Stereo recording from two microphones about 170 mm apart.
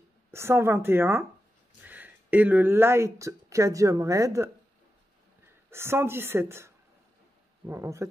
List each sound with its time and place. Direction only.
0.3 s speech: 15° right (ahead or behind)
5.7 s speech: 15° right (ahead or behind)